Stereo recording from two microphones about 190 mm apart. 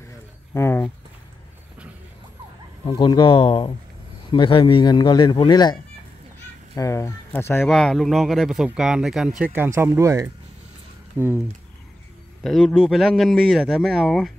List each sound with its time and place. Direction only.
0.6 s speech: 15° left (ahead or behind)
2.8 s a man's voice: 25° left (ahead or behind)
7.6 s speech: centre (ahead or behind)
12.4 s speech: centre (ahead or behind)